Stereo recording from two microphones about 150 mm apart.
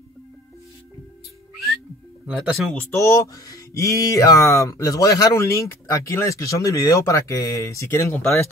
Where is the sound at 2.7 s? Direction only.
20° left (ahead or behind).